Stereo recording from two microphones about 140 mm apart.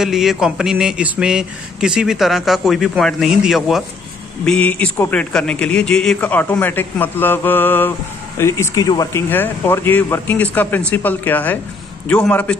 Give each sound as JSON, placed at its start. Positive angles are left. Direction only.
{"t": 0.0, "sound": "a man's voice", "side_deg": -5}
{"t": 4.5, "sound": "a man's voice", "side_deg": 10}
{"t": 9.3, "sound": "a man's voice", "side_deg": 15}